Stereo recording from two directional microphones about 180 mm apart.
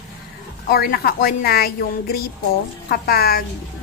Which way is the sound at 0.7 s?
55° left (ahead or behind).